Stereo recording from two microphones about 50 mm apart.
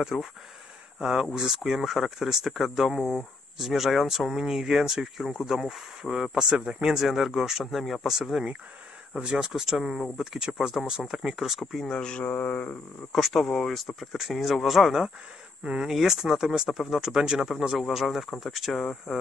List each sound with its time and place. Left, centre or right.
0.0 s speech: centre
8.2 s speech: centre
9.5 s speech: centre
11.8 s speech: centre
12.3 s mantra: left
13.1 s speech: centre
15.6 s speech: centre